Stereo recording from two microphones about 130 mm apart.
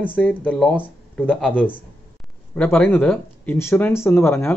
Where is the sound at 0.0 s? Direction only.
15° left (ahead or behind).